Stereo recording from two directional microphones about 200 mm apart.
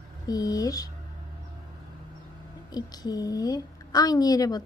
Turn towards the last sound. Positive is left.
turn(degrees=20)  # may be behind; listen again after turning